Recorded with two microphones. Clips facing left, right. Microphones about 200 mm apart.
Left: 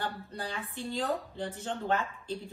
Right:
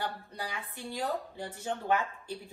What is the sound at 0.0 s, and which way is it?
Speech, 10° right (ahead or behind).